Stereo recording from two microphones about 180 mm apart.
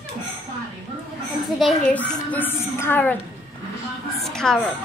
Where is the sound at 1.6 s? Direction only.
5° left (ahead or behind).